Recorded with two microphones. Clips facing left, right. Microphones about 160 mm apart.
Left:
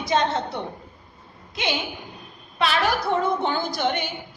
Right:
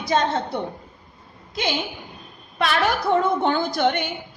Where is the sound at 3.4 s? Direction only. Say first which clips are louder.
Right 4 dB; 55° right (ahead or behind).